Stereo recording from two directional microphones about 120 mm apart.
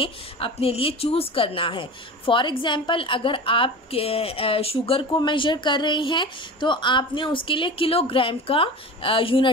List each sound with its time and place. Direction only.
0.0 s a woman's voice: 50° left (ahead or behind)